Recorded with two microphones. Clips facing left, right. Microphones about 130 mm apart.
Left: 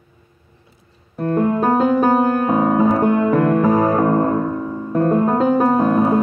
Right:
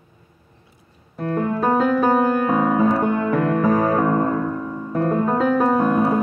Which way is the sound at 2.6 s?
10° left (ahead or behind).